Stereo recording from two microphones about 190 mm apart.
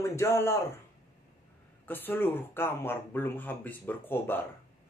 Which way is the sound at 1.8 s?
10° left (ahead or behind).